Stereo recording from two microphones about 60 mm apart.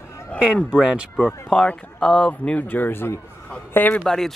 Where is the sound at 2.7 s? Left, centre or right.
Left.